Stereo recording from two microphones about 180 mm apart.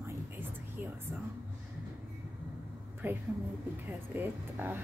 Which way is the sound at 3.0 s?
10° right (ahead or behind).